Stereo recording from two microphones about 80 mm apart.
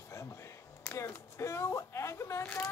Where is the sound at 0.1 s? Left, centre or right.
Left.